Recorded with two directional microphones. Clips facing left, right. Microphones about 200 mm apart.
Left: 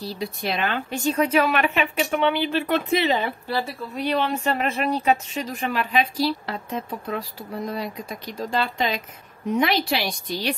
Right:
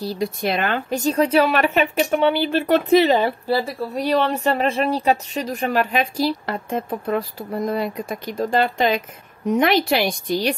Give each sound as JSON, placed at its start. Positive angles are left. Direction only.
{"t": 0.0, "sound": "speech", "side_deg": -45}